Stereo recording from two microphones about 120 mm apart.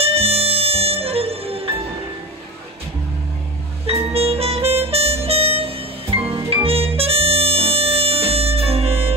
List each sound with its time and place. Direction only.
0.0 s music: 55° right (ahead or behind)
3.8 s music: 55° right (ahead or behind)
6.2 s harmonica: 55° right (ahead or behind)